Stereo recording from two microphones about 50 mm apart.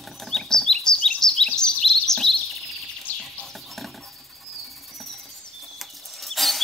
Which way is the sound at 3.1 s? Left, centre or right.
Left.